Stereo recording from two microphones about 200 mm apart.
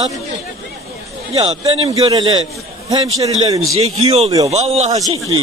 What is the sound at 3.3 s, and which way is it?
Speech, 30° right (ahead or behind).